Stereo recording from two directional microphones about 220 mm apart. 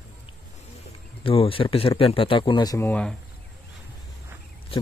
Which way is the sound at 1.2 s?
25° left (ahead or behind).